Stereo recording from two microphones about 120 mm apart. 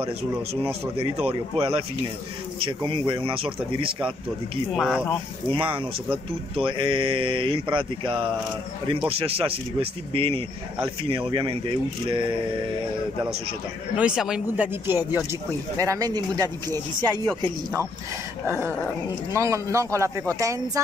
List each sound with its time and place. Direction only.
0.7 s speech: 55° right (ahead or behind)
4.7 s speech: centre (ahead or behind)
5.5 s speech: 45° right (ahead or behind)
13.9 s speech: 5° right (ahead or behind)
14.7 s speech: 15° right (ahead or behind)
15.8 s speech: 30° right (ahead or behind)
19.3 s a man's voice: 25° right (ahead or behind)